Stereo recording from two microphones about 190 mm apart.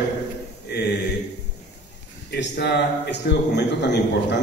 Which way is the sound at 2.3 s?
65° left (ahead or behind).